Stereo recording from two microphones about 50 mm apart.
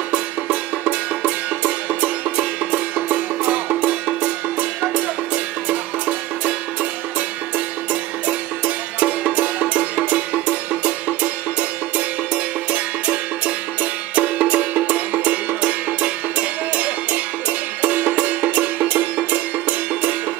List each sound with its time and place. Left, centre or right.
0.1 s music: right
12.7 s music: right